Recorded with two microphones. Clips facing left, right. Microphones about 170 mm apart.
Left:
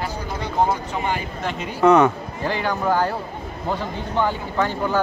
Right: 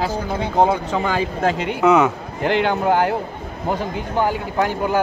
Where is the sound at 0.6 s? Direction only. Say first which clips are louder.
Right 4 dB; 90° right.